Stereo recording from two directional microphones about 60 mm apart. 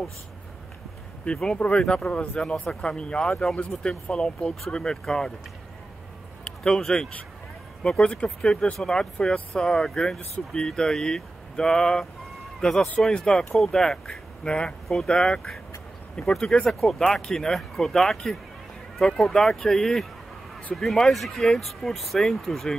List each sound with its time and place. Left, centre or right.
1.3 s speech: centre
3.9 s speech: centre
6.4 s a man's voice: centre